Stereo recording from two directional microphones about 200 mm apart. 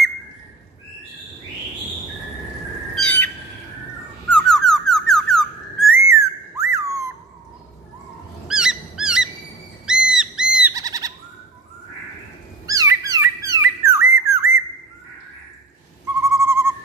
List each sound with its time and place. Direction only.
3.0 s owl: 10° left (ahead or behind)
4.3 s whistling: 5° left (ahead or behind)
6.0 s whistle: 15° right (ahead or behind)
8.5 s a sound: 5° right (ahead or behind)
10.0 s squawk: 5° right (ahead or behind)
10.7 s owl: 15° right (ahead or behind)
12.6 s a sound: 15° right (ahead or behind)
16.2 s owl: 15° right (ahead or behind)